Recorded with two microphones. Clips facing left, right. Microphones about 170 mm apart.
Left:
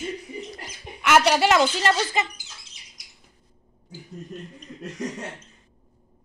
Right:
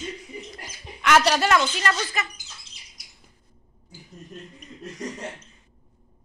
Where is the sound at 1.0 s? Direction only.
5° left (ahead or behind).